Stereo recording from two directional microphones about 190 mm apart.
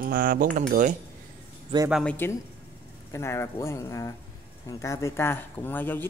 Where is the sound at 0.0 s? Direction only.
45° right (ahead or behind).